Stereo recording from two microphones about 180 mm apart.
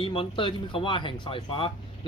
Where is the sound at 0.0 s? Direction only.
30° left (ahead or behind).